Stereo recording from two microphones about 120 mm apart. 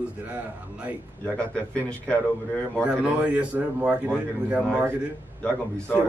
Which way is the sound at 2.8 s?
10° right (ahead or behind).